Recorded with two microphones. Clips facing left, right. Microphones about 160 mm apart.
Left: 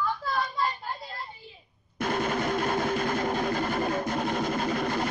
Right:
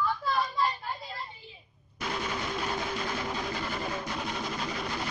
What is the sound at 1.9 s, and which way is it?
Music, 50° left (ahead or behind).